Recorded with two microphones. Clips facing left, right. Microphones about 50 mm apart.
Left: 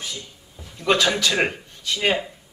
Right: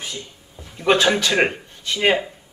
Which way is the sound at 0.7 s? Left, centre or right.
Right.